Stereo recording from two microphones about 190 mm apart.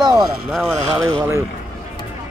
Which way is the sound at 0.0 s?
15° right (ahead or behind).